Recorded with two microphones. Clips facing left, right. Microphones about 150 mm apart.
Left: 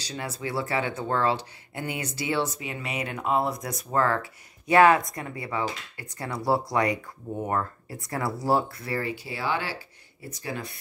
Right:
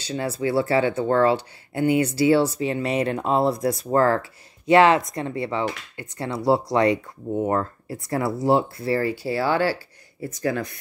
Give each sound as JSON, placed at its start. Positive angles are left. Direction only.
{"t": 0.0, "sound": "speech", "side_deg": -30}